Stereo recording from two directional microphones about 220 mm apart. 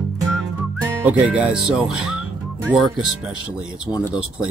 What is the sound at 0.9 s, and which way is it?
Speech, 5° right (ahead or behind).